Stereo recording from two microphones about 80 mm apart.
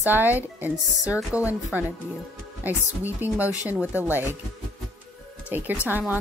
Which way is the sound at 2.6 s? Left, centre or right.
Right.